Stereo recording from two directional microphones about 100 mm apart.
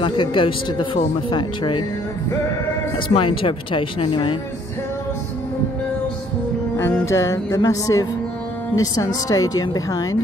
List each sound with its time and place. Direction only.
0.0 s speech: 55° left (ahead or behind)
3.1 s speech: 60° left (ahead or behind)
6.8 s music: 30° left (ahead or behind)